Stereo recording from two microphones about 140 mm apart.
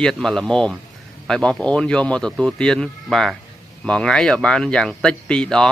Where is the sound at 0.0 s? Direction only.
5° left (ahead or behind).